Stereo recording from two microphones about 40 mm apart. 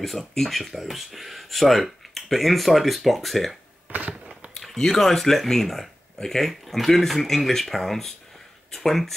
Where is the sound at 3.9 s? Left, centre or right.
Right.